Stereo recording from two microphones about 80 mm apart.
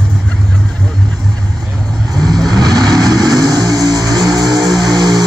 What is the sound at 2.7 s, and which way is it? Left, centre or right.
Vehicle, centre.